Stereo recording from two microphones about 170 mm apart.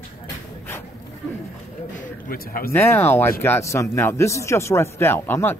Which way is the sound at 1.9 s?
55° left (ahead or behind).